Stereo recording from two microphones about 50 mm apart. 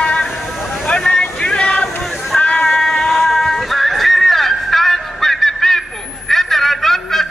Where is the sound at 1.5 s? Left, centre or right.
Centre.